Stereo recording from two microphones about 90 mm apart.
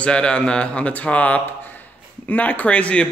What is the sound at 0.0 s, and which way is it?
Speech, 10° left (ahead or behind).